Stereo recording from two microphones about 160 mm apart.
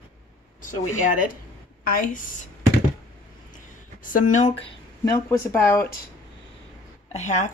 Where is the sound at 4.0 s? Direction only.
55° left (ahead or behind).